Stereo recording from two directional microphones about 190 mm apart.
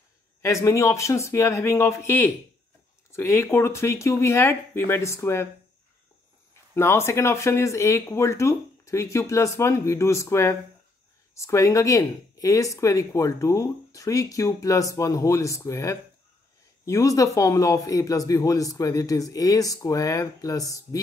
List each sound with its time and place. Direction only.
0.4 s speech: 15° left (ahead or behind)
6.5 s speech: 15° left (ahead or behind)